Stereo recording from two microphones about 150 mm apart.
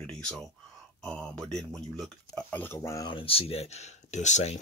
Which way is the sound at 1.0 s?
5° left (ahead or behind).